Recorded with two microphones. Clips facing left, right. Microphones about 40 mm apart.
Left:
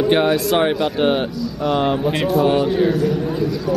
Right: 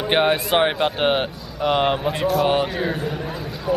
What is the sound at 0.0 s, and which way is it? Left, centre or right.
A man's voice, right.